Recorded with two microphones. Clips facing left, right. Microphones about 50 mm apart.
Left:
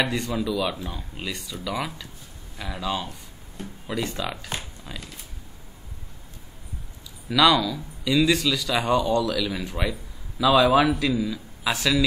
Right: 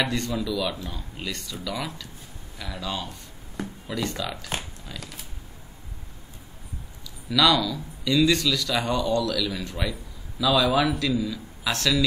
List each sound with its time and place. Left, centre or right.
0.0 s speech: centre
7.2 s a man's voice: centre
11.1 s a man's voice: centre